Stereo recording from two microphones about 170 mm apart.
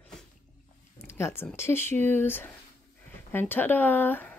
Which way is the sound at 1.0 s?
15° left (ahead or behind).